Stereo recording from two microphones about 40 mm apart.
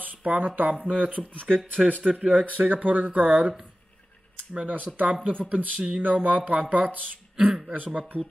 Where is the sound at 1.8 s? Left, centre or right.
Centre.